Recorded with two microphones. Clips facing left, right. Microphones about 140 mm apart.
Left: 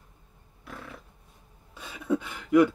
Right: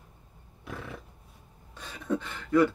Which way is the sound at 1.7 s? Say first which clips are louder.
Left 3 dB; 5° left (ahead or behind).